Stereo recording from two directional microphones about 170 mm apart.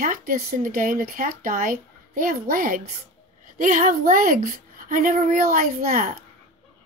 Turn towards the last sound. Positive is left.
turn(degrees=-55)  # may be behind; listen again after turning